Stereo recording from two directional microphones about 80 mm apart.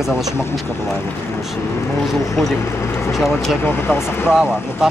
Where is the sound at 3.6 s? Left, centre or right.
Left.